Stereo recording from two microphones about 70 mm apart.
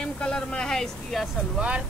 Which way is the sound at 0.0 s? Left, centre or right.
Centre.